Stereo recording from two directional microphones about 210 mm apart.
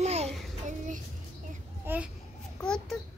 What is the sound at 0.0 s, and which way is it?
Child singing, 30° right (ahead or behind).